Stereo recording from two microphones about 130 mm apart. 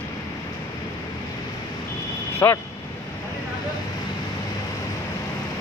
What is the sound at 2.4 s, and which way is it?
Speech, 15° left (ahead or behind).